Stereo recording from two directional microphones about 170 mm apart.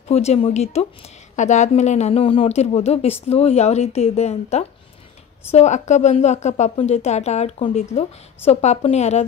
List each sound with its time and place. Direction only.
0.1 s speech: 40° left (ahead or behind)